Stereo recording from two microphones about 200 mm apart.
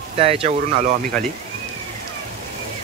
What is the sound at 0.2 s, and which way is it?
Speech, 30° right (ahead or behind).